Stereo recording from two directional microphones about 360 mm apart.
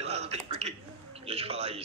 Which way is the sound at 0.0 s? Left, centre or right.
Centre.